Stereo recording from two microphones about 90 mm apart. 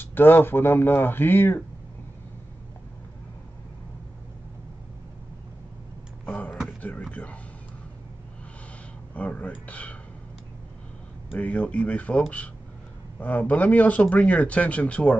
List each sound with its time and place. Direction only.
0.0 s speech: 25° left (ahead or behind)
6.2 s a sound: 20° left (ahead or behind)
9.1 s speech: 15° left (ahead or behind)
11.3 s speech: 15° left (ahead or behind)
13.2 s speech: 20° left (ahead or behind)